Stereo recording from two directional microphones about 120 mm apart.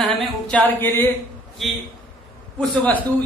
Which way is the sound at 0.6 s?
15° left (ahead or behind).